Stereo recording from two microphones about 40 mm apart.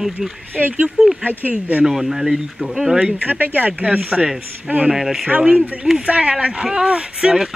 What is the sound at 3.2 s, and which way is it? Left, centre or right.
Speech, right.